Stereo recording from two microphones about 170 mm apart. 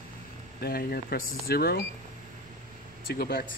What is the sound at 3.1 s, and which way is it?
Speech, 65° left (ahead or behind).